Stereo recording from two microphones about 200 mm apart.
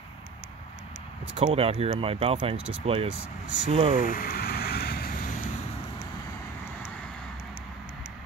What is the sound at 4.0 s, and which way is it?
Vehicle, 45° left (ahead or behind).